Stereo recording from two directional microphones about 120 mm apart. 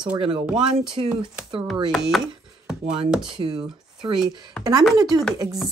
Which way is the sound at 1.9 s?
Centre (ahead or behind).